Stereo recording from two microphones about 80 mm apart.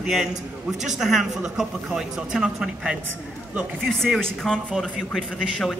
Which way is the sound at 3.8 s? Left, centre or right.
Centre.